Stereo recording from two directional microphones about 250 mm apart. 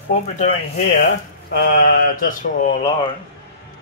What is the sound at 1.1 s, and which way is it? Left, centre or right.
Speech, left.